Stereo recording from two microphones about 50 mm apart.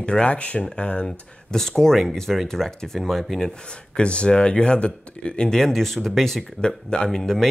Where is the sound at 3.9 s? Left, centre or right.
Left; by 6.4 s centre.